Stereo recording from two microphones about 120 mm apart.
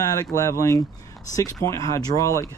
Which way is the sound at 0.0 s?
30° left (ahead or behind).